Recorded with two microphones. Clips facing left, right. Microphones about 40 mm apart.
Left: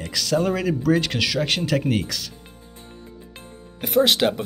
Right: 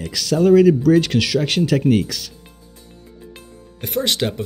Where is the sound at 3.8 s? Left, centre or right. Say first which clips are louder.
Left 3 dB; centre.